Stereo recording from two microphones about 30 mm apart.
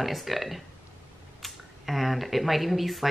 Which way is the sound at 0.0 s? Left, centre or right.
Centre.